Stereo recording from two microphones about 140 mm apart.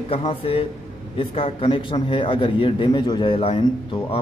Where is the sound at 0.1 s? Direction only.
40° left (ahead or behind).